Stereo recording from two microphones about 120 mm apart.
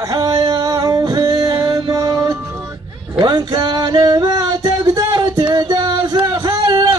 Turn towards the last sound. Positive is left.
turn(degrees=-35)  # may be behind; listen again after turning